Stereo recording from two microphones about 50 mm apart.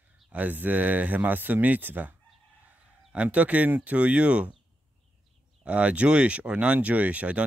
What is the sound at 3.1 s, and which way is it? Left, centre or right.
Speech, right.